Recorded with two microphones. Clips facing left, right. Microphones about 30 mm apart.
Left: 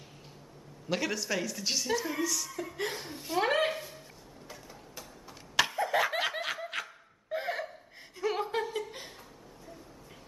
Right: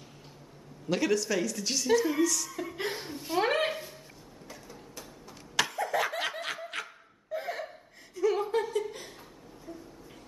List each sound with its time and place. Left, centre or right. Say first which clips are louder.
0.8 s a woman's voice: right 4 dB; centre
2.5 s speech: right 1 dB; centre
4.5 s a sound: right 2 dB; centre
5.6 s laughter: left 1 dB; centre
6.0 s snicker: left 1 dB; centre
7.3 s laughter: left 1 dB; left
8.2 s chuckle: right 4 dB; left